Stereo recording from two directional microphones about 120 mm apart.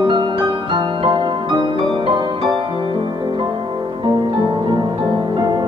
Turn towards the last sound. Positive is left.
turn(degrees=-40)  # may be behind; listen again after turning